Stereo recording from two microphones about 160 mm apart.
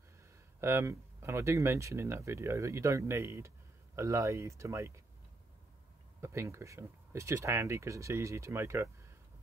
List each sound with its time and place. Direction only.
0.6 s speech: 15° right (ahead or behind)
6.2 s speech: 15° right (ahead or behind)